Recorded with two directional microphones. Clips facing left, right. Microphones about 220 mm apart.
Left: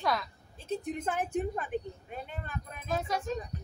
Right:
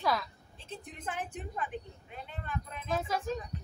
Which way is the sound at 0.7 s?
45° left (ahead or behind).